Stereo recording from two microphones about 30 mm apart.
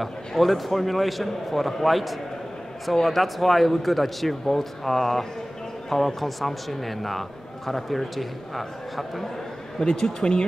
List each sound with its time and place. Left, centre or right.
0.4 s a man's voice: centre
9.9 s speech: left